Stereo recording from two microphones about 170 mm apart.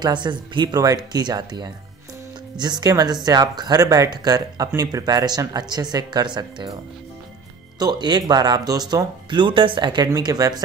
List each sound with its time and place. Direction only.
0.0 s speech: 25° right (ahead or behind)
7.8 s speech: 25° right (ahead or behind)